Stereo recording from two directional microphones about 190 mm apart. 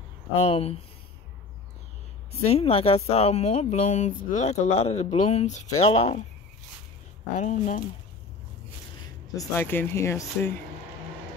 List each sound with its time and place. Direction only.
0.4 s speech: 30° left (ahead or behind)
2.4 s speech: 30° left (ahead or behind)
7.3 s speech: 40° left (ahead or behind)
9.3 s speech: 15° left (ahead or behind)